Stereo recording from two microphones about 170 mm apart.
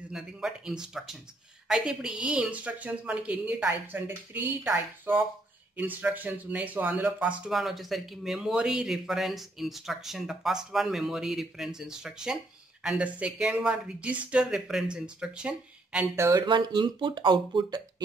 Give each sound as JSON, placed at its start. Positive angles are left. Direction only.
{"t": 0.1, "sound": "speech", "side_deg": -5}
{"t": 16.3, "sound": "speech", "side_deg": -25}